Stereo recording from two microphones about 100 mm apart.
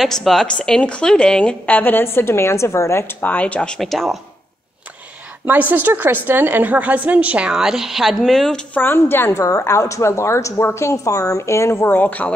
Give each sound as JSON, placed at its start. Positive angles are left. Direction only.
{"t": 0.0, "sound": "a woman's voice", "side_deg": 0}
{"t": 5.5, "sound": "a woman's voice", "side_deg": -20}
{"t": 8.8, "sound": "a woman's voice", "side_deg": 20}